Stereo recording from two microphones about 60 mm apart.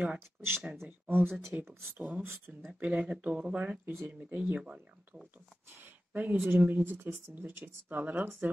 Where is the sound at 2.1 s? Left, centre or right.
Right.